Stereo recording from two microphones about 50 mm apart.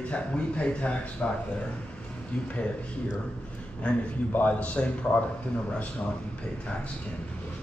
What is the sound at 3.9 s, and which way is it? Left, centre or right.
A man's voice, left.